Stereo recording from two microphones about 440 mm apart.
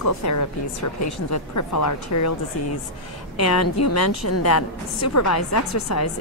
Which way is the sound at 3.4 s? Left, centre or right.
Left.